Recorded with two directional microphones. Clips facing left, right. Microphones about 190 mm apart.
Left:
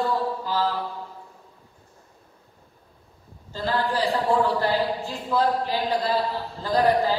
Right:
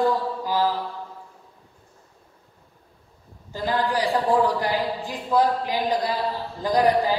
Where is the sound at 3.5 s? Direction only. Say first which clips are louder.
Right 1 dB; 15° right (ahead or behind).